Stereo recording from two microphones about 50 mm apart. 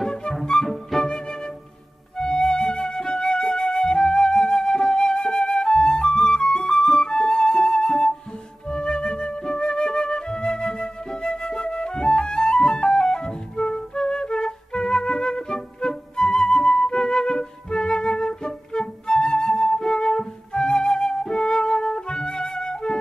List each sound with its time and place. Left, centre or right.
0.1 s music: centre
0.7 s music: centre
1.0 s flute: centre